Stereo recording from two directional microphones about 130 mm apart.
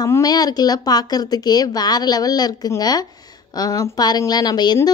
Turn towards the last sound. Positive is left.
turn(degrees=30)  # may be behind; listen again after turning